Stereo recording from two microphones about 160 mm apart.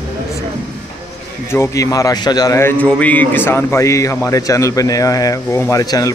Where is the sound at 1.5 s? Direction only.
15° left (ahead or behind).